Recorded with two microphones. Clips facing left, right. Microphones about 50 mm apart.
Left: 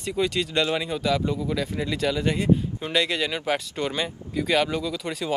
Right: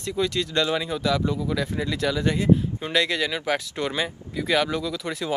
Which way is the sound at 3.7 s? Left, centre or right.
Centre.